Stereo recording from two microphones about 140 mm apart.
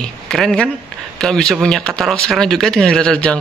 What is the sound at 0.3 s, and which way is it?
Speech, centre (ahead or behind).